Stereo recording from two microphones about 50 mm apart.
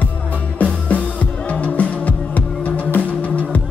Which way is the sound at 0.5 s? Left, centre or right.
Left.